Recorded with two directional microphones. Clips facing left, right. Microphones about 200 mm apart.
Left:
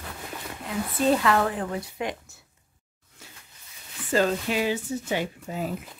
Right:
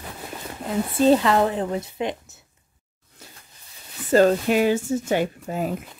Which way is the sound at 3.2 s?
40° right (ahead or behind).